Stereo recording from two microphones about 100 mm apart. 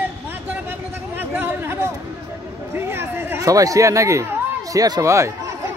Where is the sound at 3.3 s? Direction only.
35° right (ahead or behind).